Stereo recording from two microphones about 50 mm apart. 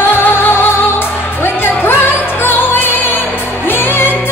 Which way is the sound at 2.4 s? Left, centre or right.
Left.